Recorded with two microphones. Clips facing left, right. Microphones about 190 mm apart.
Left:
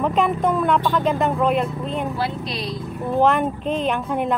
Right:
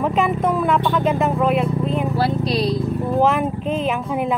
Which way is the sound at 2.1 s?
35° right (ahead or behind).